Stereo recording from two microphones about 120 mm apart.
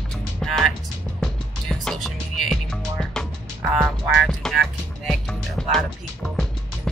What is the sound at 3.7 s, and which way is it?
Speech, centre (ahead or behind).